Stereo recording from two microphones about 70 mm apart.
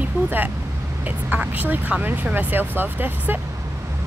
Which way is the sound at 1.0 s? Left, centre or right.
Right.